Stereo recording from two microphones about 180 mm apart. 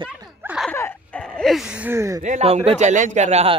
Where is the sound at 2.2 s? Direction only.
40° right (ahead or behind).